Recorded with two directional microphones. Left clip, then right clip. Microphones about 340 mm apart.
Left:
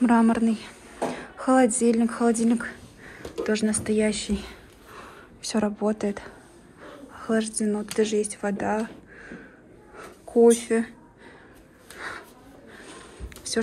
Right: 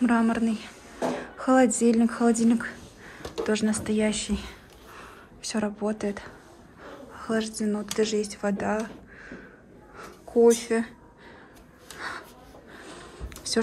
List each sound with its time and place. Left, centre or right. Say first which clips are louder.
0.0 s speech: left 3 dB; centre
4.9 s a sound: left 2 dB; centre
6.8 s speech: even; centre
8.1 s speech: left 2 dB; right
8.4 s a sound: left 1 dB; centre
12.0 s snort: even; centre